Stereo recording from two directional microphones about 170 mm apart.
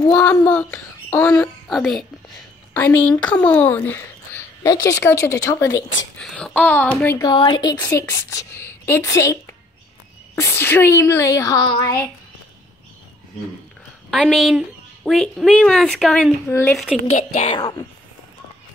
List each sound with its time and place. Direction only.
0.5 s a woman's voice: 10° left (ahead or behind)
1.7 s a woman's voice: centre (ahead or behind); by 5.9 s 15° left (ahead or behind)
6.1 s a woman's voice: 5° left (ahead or behind)
7.2 s speech: 25° left (ahead or behind)
7.7 s a woman's voice: 15° left (ahead or behind)
14.1 s speech: centre (ahead or behind)
16.7 s speech: centre (ahead or behind)
17.1 s speech: 45° left (ahead or behind)